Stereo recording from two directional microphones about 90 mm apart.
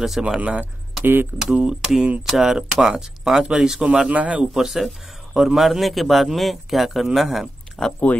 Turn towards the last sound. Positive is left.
turn(degrees=0)  # may be behind; listen again after turning